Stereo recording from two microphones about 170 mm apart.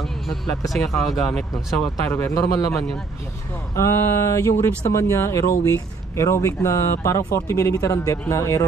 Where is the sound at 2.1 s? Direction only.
20° left (ahead or behind).